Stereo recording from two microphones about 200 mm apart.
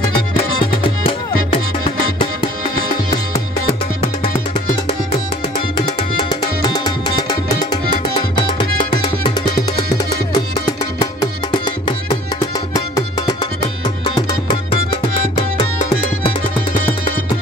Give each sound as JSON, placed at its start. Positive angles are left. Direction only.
{"t": 0.8, "sound": "music", "side_deg": 25}
{"t": 6.6, "sound": "music", "side_deg": 20}